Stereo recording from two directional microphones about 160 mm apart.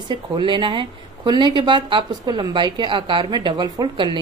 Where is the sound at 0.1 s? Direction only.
30° right (ahead or behind).